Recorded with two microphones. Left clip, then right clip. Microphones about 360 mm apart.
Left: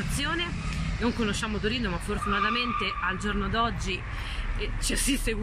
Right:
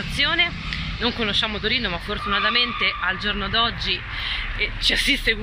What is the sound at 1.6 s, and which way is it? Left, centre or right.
Speech, right.